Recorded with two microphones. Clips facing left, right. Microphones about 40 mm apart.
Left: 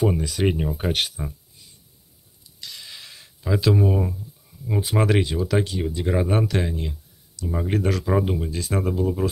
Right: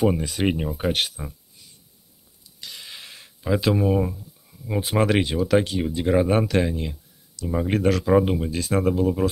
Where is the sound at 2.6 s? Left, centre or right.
Right.